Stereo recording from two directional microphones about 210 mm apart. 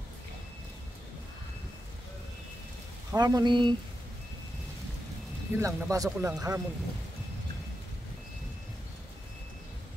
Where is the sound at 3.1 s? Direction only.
20° right (ahead or behind).